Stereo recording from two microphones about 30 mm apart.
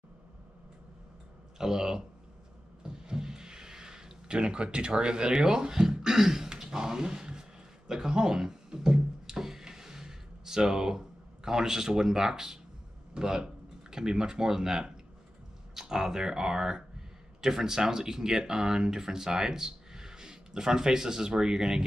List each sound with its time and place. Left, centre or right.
1.6 s speech: centre
2.8 s a sound: right
13.1 s speech: right